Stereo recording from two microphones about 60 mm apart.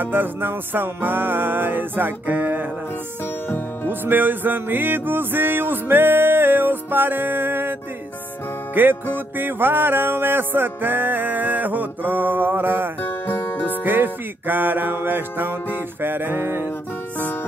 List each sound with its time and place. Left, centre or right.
0.0 s music: right
3.4 s music: left
4.0 s music: right
8.8 s music: right
13.0 s music: left
13.8 s music: right